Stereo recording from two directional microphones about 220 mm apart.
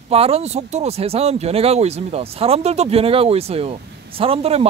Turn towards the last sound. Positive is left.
turn(degrees=-25)  # may be behind; listen again after turning